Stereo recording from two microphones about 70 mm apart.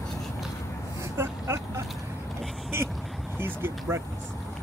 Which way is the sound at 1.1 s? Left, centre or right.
Right.